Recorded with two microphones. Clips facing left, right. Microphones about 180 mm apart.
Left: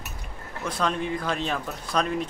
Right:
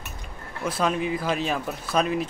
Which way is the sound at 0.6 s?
5° right (ahead or behind).